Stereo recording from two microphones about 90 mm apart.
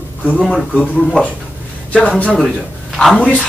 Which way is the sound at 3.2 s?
10° left (ahead or behind).